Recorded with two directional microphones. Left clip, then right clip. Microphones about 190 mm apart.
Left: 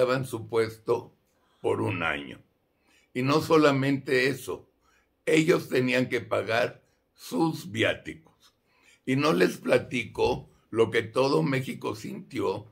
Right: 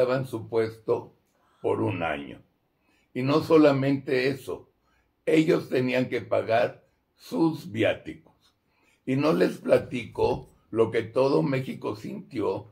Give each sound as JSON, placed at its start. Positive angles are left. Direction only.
{"t": 0.0, "sound": "a man's voice", "side_deg": 30}